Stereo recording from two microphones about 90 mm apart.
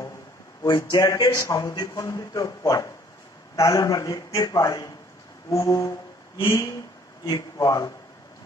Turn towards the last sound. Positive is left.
turn(degrees=40)  # may be behind; listen again after turning